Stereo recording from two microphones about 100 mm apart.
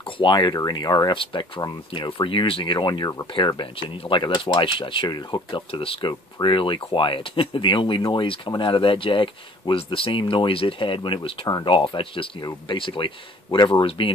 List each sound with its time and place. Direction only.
0.0 s speech: 55° left (ahead or behind)
3.3 s speech: 55° left (ahead or behind)
5.7 s speech: 60° left (ahead or behind)